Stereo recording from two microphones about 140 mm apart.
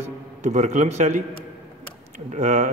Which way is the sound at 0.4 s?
60° right (ahead or behind).